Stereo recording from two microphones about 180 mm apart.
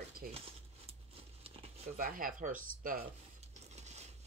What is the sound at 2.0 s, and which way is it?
Speech, 50° right (ahead or behind).